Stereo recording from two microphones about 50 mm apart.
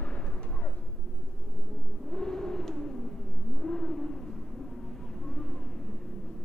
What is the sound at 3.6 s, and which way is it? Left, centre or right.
Vehicle, centre.